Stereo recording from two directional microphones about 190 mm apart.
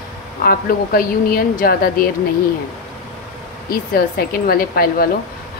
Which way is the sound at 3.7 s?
50° left (ahead or behind).